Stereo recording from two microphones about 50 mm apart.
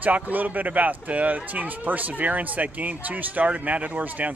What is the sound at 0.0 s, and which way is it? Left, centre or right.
Speech, right.